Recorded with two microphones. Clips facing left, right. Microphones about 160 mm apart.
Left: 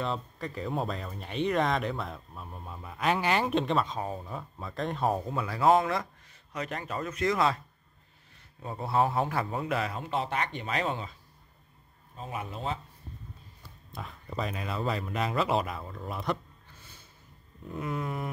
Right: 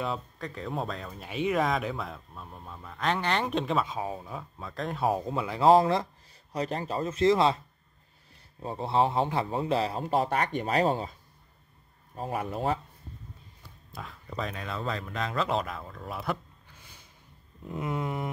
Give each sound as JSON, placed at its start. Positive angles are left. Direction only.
{"t": 0.0, "sound": "speech", "side_deg": 0}
{"t": 5.2, "sound": "speech", "side_deg": -20}
{"t": 8.6, "sound": "a man's voice", "side_deg": -25}
{"t": 12.2, "sound": "speech", "side_deg": -45}
{"t": 13.9, "sound": "speech", "side_deg": 0}
{"t": 17.6, "sound": "speech", "side_deg": -25}